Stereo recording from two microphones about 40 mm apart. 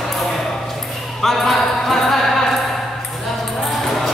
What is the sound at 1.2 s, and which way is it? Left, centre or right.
Music, centre.